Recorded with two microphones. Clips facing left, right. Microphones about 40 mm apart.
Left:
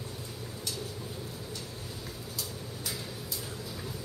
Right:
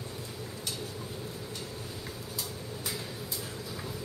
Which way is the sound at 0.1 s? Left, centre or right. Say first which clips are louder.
Right 1 dB; right.